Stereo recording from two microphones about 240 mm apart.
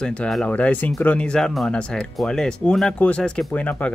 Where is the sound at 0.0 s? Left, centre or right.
Centre.